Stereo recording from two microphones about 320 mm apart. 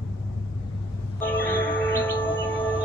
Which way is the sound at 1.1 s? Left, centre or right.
Centre.